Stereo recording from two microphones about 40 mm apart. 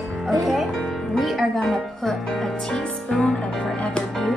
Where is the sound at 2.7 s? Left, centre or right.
Centre.